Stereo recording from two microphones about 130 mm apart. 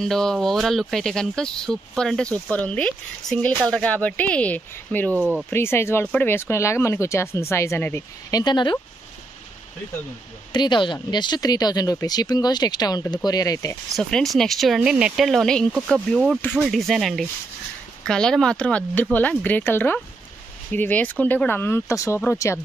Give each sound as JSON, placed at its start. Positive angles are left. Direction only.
{"t": 0.0, "sound": "speech", "side_deg": 5}
{"t": 8.4, "sound": "speech", "side_deg": 35}
{"t": 10.5, "sound": "speech", "side_deg": 35}
{"t": 13.9, "sound": "speech", "side_deg": 0}